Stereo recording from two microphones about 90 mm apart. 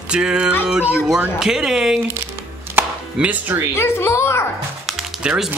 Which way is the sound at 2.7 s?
15° right (ahead or behind).